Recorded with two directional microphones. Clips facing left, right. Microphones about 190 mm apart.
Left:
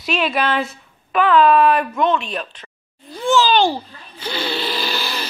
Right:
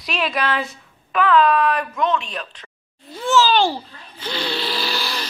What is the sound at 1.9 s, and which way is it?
Speech, 25° left (ahead or behind).